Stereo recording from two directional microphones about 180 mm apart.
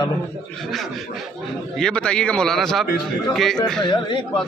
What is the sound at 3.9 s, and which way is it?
Speech, 25° left (ahead or behind).